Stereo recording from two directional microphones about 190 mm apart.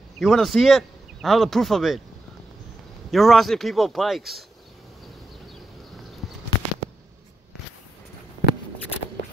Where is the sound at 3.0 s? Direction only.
Centre (ahead or behind).